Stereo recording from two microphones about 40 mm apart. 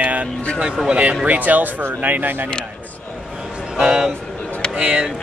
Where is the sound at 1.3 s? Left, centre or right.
Right.